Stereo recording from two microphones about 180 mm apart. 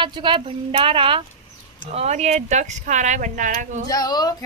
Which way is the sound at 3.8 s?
20° left (ahead or behind).